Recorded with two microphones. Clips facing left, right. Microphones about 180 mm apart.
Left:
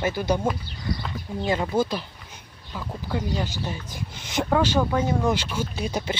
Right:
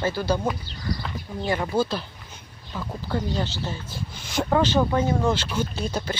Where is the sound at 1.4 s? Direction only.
20° left (ahead or behind).